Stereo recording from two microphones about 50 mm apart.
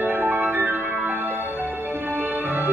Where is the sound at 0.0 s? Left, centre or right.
Right.